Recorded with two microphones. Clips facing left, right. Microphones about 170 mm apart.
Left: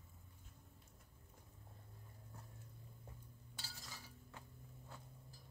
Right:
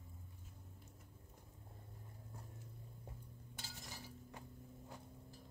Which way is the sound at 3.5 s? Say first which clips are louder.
Right 3 dB; 20° right (ahead or behind).